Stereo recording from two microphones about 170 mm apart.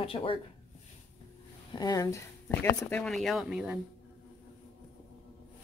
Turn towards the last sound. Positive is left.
turn(degrees=-5)  # may be behind; listen again after turning